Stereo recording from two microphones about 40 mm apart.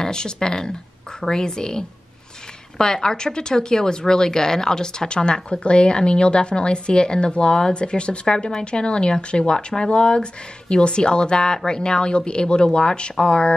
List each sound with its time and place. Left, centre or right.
0.0 s speech: centre